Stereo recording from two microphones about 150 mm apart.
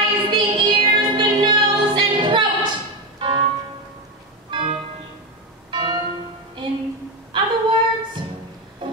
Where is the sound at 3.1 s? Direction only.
35° right (ahead or behind).